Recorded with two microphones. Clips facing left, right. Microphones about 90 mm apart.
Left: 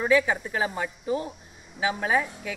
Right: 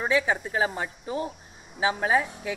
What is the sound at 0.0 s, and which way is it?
A woman's voice, 25° right (ahead or behind).